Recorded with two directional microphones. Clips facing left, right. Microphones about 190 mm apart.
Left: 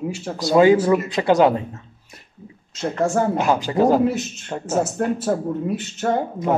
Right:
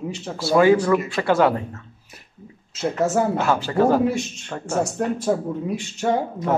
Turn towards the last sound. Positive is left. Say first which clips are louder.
# even
turn(degrees=0)  # may be behind; listen again after turning